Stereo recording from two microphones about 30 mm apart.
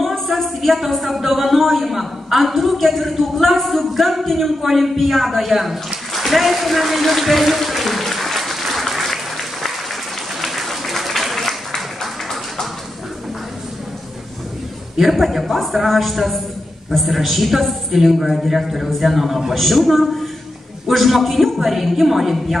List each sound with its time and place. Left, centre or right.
0.3 s a woman's voice: centre
6.1 s a sound: centre
10.4 s applause: centre
15.0 s a woman's voice: centre